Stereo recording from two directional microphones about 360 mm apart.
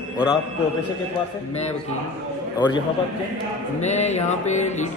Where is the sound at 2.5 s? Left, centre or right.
Centre.